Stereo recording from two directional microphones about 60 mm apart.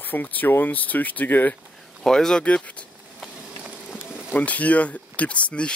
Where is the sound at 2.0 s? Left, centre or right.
Centre.